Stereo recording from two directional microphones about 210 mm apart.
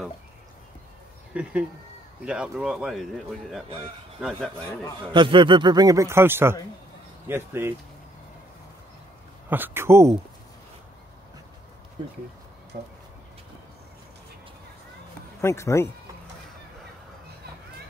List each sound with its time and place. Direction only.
1.3 s speech: 5° right (ahead or behind)
3.6 s a man's voice: 25° right (ahead or behind)
4.2 s speech: centre (ahead or behind)
5.1 s a man's voice: 25° right (ahead or behind)
9.5 s speech: 10° right (ahead or behind)
15.4 s speech: 15° left (ahead or behind)